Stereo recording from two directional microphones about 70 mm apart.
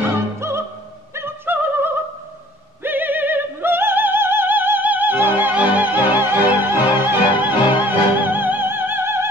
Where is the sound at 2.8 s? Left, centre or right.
Right.